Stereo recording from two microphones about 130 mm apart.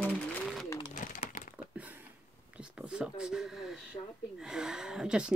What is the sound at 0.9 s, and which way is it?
Pigeon, 75° left (ahead or behind).